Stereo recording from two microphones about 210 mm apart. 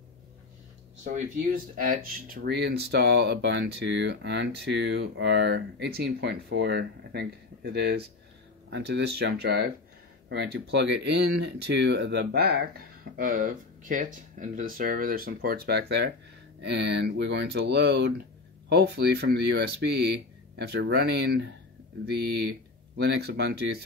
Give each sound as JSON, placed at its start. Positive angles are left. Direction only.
{"t": 1.0, "sound": "speech", "side_deg": -40}